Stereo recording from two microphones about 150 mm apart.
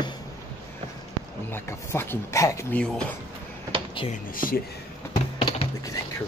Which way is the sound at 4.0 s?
35° left (ahead or behind).